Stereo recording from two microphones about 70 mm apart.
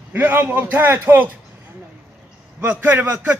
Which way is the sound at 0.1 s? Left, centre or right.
Right.